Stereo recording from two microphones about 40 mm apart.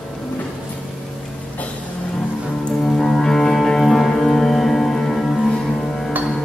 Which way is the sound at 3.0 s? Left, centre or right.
Centre.